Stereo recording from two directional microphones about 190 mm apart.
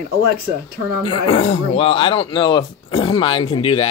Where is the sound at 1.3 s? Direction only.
35° left (ahead or behind).